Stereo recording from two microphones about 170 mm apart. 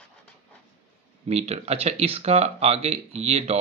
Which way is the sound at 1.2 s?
40° right (ahead or behind).